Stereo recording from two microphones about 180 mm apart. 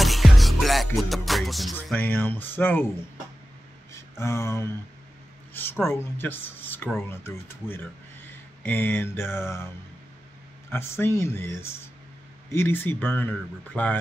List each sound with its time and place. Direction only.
0.0 s music: centre (ahead or behind)
3.9 s a sound: 15° left (ahead or behind)
5.5 s speech: 10° left (ahead or behind)
10.7 s speech: 15° left (ahead or behind)